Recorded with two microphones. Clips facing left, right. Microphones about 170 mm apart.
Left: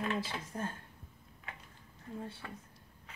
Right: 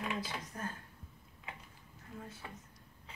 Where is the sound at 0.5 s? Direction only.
30° left (ahead or behind).